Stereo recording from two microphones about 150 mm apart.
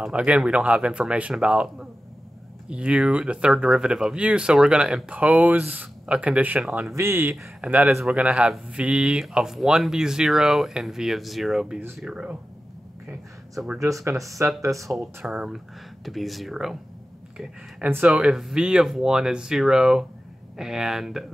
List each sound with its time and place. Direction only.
0.0 s speech: 10° right (ahead or behind)
13.7 s speech: 20° right (ahead or behind)
14.9 s speech: 5° right (ahead or behind)